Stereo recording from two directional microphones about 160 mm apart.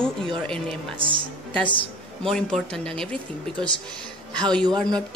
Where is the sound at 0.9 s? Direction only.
30° right (ahead or behind).